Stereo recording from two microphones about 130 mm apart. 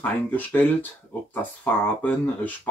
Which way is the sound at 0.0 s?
10° left (ahead or behind).